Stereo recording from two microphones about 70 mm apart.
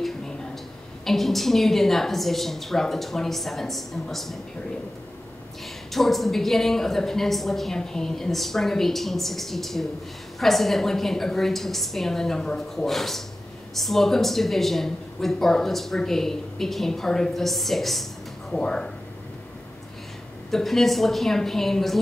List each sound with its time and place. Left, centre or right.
1.0 s speech: centre
5.9 s speech: centre
20.5 s speech: centre